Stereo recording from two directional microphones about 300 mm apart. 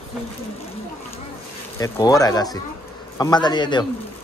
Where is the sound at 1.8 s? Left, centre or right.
Centre.